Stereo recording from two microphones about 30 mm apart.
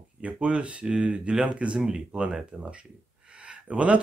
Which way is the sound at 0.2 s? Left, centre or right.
Right.